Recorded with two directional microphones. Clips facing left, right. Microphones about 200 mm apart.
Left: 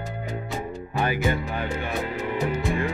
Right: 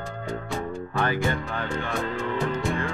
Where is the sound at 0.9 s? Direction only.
15° left (ahead or behind).